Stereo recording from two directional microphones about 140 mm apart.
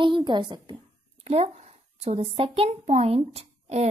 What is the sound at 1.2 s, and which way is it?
A woman's voice, 45° right (ahead or behind).